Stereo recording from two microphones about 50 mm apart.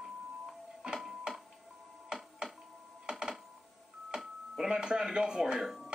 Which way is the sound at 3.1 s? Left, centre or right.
Centre.